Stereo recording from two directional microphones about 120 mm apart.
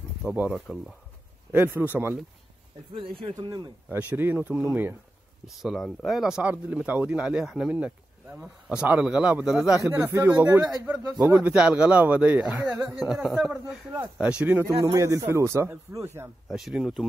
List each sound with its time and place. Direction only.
0.3 s speech: 10° right (ahead or behind)
0.6 s speech: centre (ahead or behind)
1.5 s speech: 15° right (ahead or behind)
3.0 s speech: 50° right (ahead or behind)
3.3 s speech: 35° right (ahead or behind)
3.9 s speech: 15° right (ahead or behind)
5.6 s speech: centre (ahead or behind)
9.9 s speech: 20° right (ahead or behind)
13.0 s speech: centre (ahead or behind)
14.7 s speech: 25° right (ahead or behind)
16.4 s speech: centre (ahead or behind)